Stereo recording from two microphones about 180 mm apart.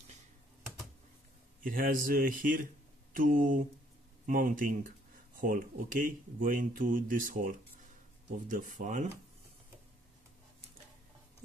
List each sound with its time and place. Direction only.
1.6 s speech: 50° right (ahead or behind)